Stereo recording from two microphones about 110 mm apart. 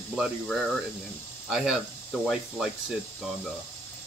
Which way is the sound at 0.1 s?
5° right (ahead or behind).